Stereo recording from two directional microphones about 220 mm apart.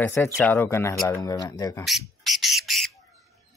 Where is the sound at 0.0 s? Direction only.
10° left (ahead or behind).